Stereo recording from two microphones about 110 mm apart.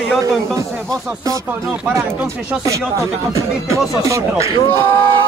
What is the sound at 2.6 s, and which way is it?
Speech, 30° right (ahead or behind).